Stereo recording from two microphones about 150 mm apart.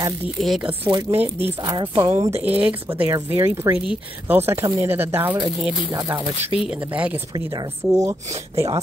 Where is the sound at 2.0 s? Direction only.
20° right (ahead or behind).